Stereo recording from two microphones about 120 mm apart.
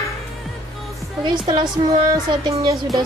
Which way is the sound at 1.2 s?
40° right (ahead or behind).